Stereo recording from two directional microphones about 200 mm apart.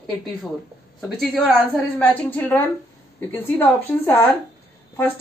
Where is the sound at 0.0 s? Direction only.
Centre (ahead or behind).